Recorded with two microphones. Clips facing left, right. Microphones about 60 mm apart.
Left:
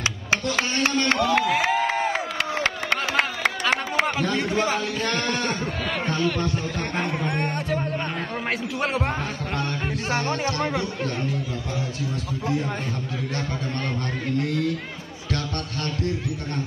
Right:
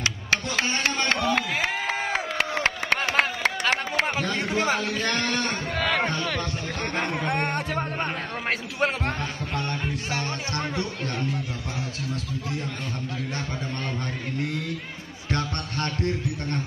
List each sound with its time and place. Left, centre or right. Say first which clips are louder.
1.1 s a sound: left 4 dB; centre
7.1 s speech: even; right
9.8 s speech: left 4 dB; left